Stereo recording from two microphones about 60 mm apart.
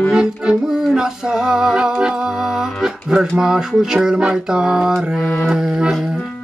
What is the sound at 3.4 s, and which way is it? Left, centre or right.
Mantra, centre.